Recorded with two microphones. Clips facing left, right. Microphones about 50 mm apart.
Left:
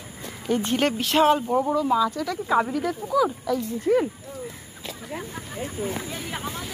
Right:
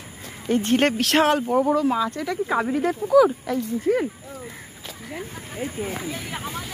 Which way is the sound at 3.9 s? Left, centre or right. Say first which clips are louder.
Left 1 dB; centre.